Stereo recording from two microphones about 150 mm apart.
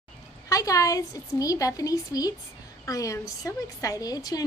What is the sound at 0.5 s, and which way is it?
A woman's voice, 25° left (ahead or behind).